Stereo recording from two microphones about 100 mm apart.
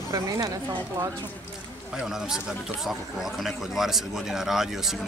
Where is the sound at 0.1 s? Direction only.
35° right (ahead or behind).